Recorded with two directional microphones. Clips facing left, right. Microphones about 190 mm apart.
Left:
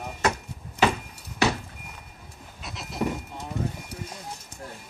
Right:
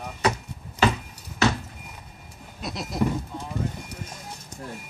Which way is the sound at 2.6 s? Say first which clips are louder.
Right 7 dB; 40° right (ahead or behind).